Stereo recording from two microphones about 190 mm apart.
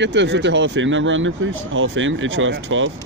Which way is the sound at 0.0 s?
70° right (ahead or behind).